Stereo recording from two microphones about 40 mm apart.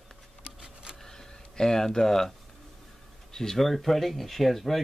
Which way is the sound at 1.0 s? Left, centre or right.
Centre.